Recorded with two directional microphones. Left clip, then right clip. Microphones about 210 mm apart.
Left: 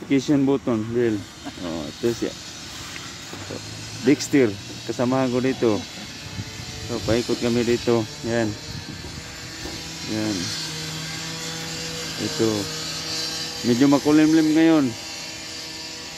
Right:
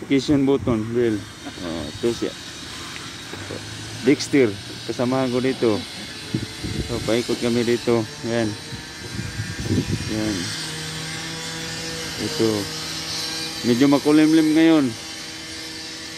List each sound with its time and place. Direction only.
0.1 s speech: 5° left (ahead or behind)
1.7 s a sound: centre (ahead or behind)
4.0 s speech: 5° left (ahead or behind)
6.9 s speech: 15° left (ahead or behind)
7.4 s speech: 5° left (ahead or behind)
10.2 s a sound: 45° left (ahead or behind)
13.7 s speech: centre (ahead or behind)